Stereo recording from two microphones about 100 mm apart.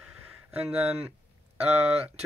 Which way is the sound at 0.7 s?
20° right (ahead or behind).